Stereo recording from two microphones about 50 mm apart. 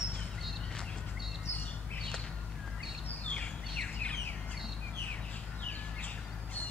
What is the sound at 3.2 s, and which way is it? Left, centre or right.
Bird, left.